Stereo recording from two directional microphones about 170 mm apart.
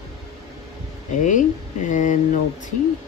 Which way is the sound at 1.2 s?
45° left (ahead or behind).